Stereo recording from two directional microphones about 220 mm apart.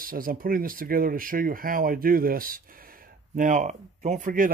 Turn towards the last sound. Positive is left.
turn(degrees=-35)  # may be behind; listen again after turning